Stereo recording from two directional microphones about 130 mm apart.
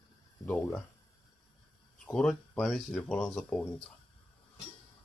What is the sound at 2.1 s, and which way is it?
Speech, 5° left (ahead or behind).